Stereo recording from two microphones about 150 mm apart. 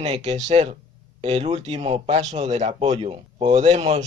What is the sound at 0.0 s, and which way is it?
Speech, 45° right (ahead or behind).